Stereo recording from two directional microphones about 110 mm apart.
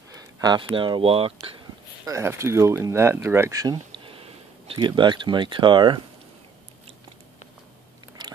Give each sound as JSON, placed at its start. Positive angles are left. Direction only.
{"t": 0.4, "sound": "speech", "side_deg": -40}
{"t": 2.0, "sound": "speech", "side_deg": -25}
{"t": 8.2, "sound": "biting", "side_deg": -45}